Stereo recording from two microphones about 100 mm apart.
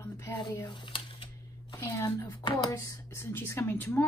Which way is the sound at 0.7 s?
55° left (ahead or behind).